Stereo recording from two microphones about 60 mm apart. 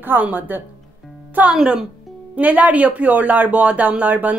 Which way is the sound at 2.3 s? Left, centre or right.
Right.